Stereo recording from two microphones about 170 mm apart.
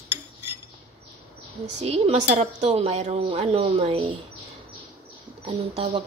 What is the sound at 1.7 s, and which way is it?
Speech, 35° right (ahead or behind).